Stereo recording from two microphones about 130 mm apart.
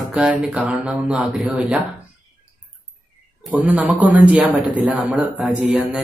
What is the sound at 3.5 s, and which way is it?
Speech, 10° right (ahead or behind).